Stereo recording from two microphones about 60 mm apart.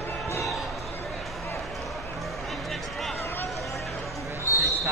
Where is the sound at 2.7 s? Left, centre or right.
Centre.